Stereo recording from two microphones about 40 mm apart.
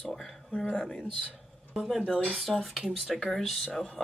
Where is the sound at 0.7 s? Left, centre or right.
Centre.